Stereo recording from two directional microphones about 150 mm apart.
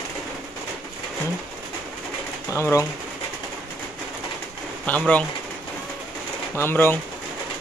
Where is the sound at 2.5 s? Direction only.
20° left (ahead or behind).